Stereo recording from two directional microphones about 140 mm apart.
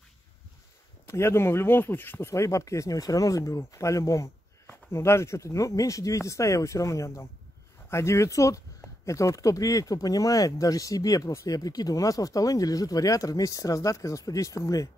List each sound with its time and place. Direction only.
1.0 s speech: 20° left (ahead or behind)